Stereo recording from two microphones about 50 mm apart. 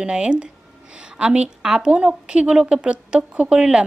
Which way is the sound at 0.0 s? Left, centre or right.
Right.